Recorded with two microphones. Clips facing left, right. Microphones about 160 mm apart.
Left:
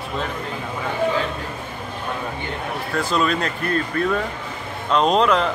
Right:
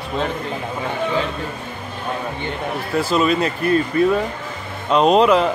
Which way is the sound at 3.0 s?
5° right (ahead or behind).